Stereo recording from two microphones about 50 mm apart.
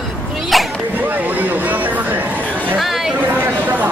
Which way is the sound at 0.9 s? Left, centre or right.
Right.